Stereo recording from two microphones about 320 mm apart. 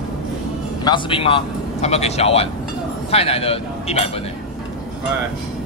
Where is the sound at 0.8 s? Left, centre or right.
Centre.